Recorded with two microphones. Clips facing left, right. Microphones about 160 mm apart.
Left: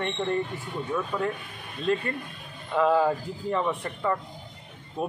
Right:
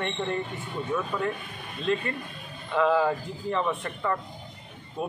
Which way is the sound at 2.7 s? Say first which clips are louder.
Left 1 dB; 5° left (ahead or behind).